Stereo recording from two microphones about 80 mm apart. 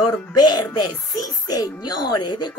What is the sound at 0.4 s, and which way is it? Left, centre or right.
Speech, left.